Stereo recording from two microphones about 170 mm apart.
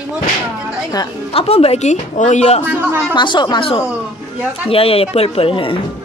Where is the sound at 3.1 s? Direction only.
30° left (ahead or behind).